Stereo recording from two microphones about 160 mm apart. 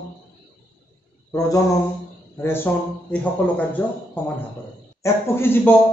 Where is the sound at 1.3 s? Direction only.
20° left (ahead or behind).